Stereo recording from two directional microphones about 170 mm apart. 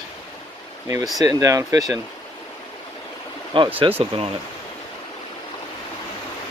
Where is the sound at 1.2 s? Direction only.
20° right (ahead or behind).